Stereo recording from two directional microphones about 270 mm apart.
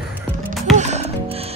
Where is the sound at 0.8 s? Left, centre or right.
Right.